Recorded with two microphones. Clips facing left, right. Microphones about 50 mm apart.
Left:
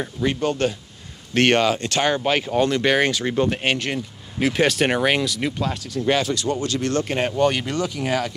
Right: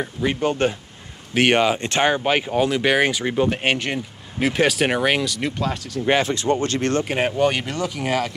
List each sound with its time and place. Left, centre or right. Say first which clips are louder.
0.0 s speech: right 1 dB; centre
2.1 s speech: even; centre
6.0 s speech: right 2 dB; right
7.0 s speech: left 1 dB; centre